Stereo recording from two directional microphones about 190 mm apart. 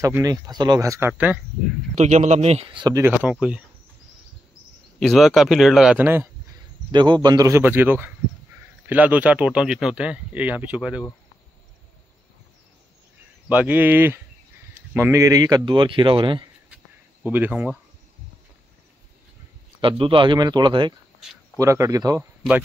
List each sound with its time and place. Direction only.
0.0 s speech: 20° right (ahead or behind)
2.0 s speech: 40° right (ahead or behind); by 3.6 s 5° right (ahead or behind)
5.0 s speech: centre (ahead or behind)
6.9 s speech: 25° right (ahead or behind); by 11.1 s 5° right (ahead or behind)
13.5 s speech: 10° right (ahead or behind); by 16.4 s 25° right (ahead or behind)
16.7 s a sound: 10° right (ahead or behind)
19.8 s speech: 25° right (ahead or behind)